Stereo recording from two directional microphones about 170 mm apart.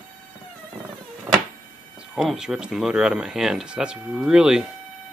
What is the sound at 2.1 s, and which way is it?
Speech, 5° right (ahead or behind).